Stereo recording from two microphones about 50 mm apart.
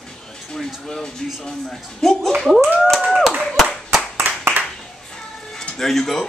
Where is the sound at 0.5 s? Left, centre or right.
Centre.